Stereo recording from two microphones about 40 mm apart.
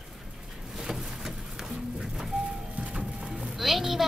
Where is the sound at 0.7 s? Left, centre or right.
Centre.